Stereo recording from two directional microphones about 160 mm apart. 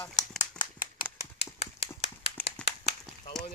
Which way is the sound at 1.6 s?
40° left (ahead or behind).